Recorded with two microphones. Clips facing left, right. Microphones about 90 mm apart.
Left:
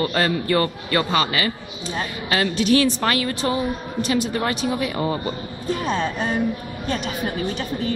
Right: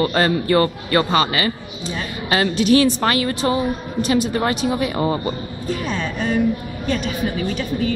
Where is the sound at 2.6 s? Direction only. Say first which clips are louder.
Right 3 dB; 10° right (ahead or behind).